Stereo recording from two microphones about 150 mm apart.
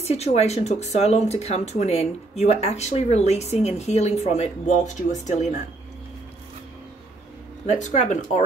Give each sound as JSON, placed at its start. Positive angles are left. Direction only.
{"t": 0.0, "sound": "speech", "side_deg": 45}
{"t": 7.6, "sound": "speech", "side_deg": 55}